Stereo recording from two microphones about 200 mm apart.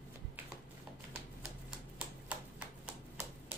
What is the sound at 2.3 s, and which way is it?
Typewriter, 5° right (ahead or behind).